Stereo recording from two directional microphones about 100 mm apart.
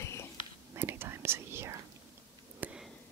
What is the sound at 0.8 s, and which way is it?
Whispering, 20° right (ahead or behind).